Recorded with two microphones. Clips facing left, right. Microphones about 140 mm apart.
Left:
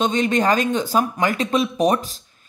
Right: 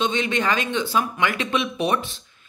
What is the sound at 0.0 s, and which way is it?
Speech, 45° left (ahead or behind).